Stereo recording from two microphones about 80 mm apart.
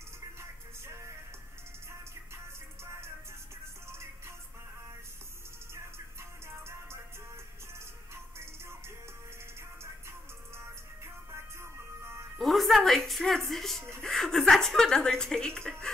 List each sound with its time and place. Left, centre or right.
0.4 s music: right
8.1 s music: right
12.4 s speech: centre